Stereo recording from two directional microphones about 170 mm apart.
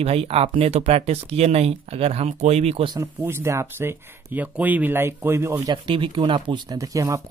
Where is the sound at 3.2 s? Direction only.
15° right (ahead or behind).